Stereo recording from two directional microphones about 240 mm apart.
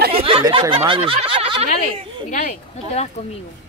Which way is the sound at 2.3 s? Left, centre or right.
Left.